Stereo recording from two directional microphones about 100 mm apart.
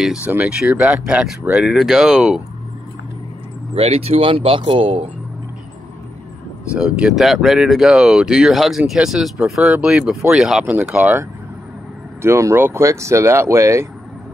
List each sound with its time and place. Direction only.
0.0 s speech: 5° right (ahead or behind)
3.7 s speech: 90° right; by 5.1 s 70° right (ahead or behind)
6.7 s speech: 10° right (ahead or behind)
12.2 s speech: 30° right (ahead or behind)